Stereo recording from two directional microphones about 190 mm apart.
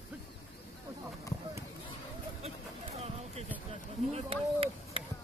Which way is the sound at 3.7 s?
30° right (ahead or behind).